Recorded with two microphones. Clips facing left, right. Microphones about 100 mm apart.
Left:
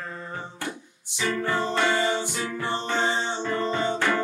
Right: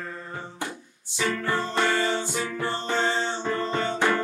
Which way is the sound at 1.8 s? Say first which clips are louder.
Right 1 dB; 15° left (ahead or behind).